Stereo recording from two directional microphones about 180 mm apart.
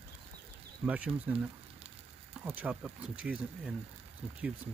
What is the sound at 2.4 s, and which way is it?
Speech, 10° right (ahead or behind).